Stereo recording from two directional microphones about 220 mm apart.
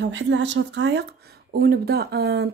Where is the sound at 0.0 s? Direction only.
55° right (ahead or behind).